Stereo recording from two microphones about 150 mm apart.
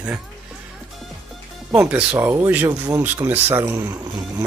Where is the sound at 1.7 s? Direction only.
10° right (ahead or behind).